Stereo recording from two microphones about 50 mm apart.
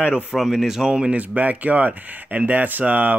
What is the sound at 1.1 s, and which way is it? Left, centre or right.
Speech, right.